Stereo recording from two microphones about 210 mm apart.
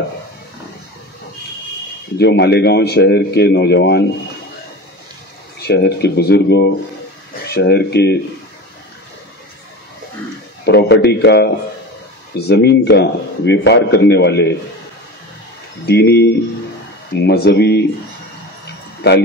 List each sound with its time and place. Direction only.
2.1 s speech: 50° left (ahead or behind)
5.6 s speech: 50° left (ahead or behind)
10.6 s speech: 55° left (ahead or behind)
15.8 s speech: 50° left (ahead or behind)